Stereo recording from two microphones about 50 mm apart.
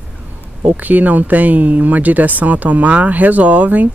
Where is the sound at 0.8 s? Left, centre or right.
Right.